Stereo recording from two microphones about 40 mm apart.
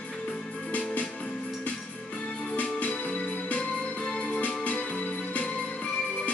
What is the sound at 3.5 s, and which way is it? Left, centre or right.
Music, left.